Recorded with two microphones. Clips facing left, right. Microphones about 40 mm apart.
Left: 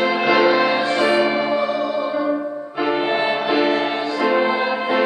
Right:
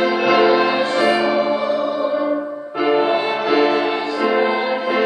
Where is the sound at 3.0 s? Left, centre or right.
Left.